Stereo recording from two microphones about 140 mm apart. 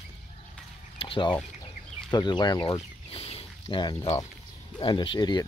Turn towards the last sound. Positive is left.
turn(degrees=30)  # may be behind; listen again after turning